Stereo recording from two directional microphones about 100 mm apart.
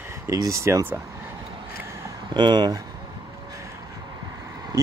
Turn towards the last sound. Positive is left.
turn(degrees=-25)  # may be behind; listen again after turning